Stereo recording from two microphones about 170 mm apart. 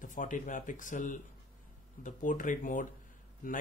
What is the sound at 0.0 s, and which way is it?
Speech, 50° left (ahead or behind).